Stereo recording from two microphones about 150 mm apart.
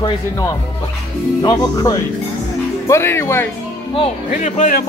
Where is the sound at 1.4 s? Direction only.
25° left (ahead or behind).